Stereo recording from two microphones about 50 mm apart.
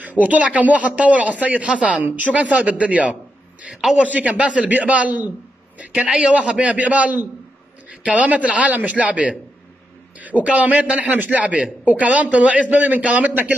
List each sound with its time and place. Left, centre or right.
0.2 s a man's voice: right
3.7 s a man's voice: centre
4.0 s a man's voice: right